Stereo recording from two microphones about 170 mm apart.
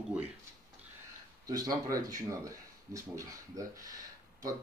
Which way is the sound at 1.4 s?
20° right (ahead or behind).